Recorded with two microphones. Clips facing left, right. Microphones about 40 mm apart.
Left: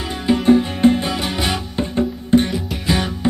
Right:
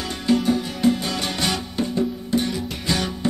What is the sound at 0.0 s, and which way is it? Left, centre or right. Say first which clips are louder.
Music: left 2 dB; centre.